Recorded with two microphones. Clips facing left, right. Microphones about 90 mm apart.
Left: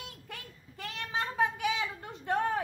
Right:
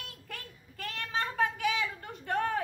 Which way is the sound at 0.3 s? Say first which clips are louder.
Right 1 dB; 20° left (ahead or behind).